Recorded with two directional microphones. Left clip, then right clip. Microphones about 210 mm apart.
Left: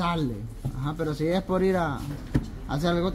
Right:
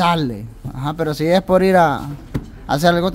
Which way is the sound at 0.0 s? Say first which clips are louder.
Right 11 dB; 45° right (ahead or behind).